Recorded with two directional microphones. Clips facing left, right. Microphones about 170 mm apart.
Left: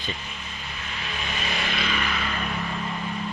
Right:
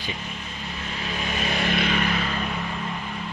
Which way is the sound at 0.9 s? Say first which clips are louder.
Right 4 dB; 35° right (ahead or behind).